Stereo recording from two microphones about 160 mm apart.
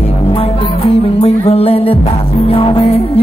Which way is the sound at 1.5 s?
40° left (ahead or behind).